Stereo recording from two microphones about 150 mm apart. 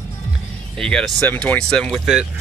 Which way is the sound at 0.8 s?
5° left (ahead or behind).